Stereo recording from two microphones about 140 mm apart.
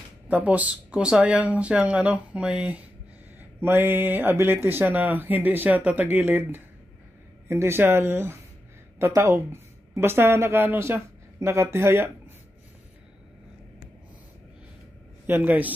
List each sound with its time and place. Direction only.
0.3 s a woman's voice: 10° right (ahead or behind)
15.2 s speech: 15° right (ahead or behind)